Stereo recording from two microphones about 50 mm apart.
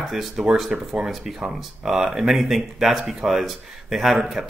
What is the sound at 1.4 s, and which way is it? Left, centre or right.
Speech, centre.